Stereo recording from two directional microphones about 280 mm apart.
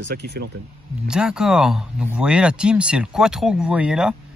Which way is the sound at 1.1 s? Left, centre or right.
Centre.